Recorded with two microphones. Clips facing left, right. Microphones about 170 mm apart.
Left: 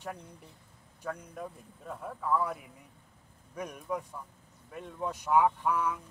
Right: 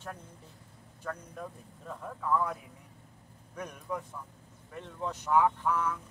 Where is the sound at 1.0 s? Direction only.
10° left (ahead or behind).